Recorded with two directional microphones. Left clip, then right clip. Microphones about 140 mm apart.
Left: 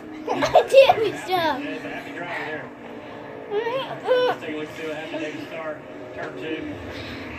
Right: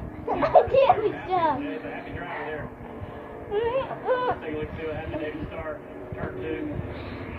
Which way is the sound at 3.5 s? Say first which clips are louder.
Even; 10° left (ahead or behind).